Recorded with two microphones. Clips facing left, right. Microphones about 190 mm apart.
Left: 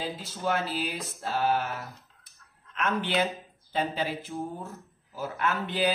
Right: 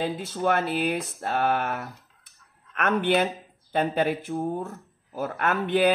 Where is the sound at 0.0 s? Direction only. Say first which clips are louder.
Right 6 dB; 55° right (ahead or behind).